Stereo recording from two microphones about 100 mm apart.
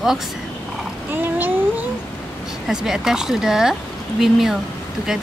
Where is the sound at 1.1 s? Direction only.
20° right (ahead or behind).